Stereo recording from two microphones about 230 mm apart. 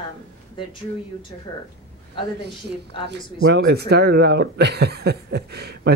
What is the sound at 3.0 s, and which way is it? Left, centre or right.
Speech, right.